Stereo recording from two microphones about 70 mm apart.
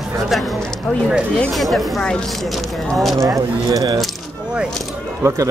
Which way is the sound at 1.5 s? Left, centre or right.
Centre.